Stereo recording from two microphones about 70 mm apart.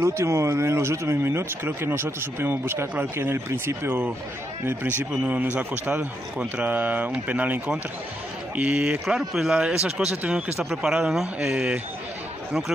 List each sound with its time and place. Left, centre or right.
0.0 s speech: right; by 9.0 s centre
9.0 s speech: centre